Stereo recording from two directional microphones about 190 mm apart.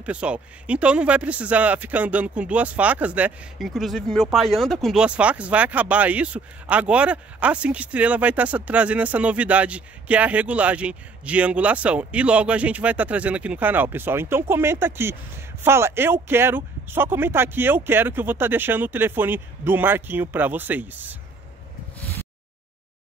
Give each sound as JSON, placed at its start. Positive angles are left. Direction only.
{"t": 0.0, "sound": "speech", "side_deg": -5}